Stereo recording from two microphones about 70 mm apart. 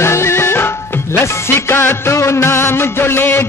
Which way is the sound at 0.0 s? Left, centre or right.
Left.